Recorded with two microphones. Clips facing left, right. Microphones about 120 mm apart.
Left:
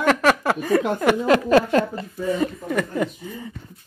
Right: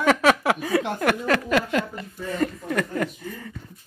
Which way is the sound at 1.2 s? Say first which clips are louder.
Left 9 dB; 25° left (ahead or behind).